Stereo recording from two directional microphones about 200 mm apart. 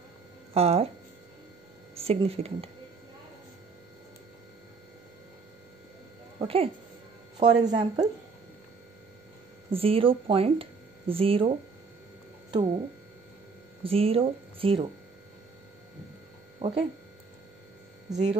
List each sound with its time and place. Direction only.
0.6 s speech: 30° right (ahead or behind)
2.0 s speech: 30° right (ahead or behind)
6.4 s speech: 30° right (ahead or behind)
9.7 s speech: 30° right (ahead or behind)
13.8 s speech: 30° right (ahead or behind)
16.5 s a sound: 30° right (ahead or behind)
18.1 s speech: 35° right (ahead or behind)